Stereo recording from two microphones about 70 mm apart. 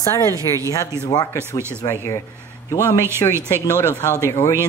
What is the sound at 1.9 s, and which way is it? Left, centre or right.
Speech, left.